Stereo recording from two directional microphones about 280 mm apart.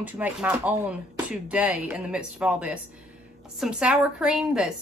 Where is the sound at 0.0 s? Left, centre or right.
Centre.